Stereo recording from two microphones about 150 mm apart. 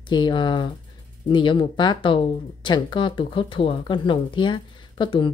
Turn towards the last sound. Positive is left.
turn(degrees=30)  # may be behind; listen again after turning